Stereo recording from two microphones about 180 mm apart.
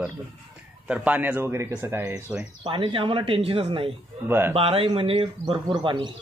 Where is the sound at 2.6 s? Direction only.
25° right (ahead or behind).